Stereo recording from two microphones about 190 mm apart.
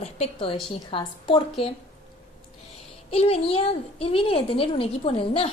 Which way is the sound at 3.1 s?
30° left (ahead or behind).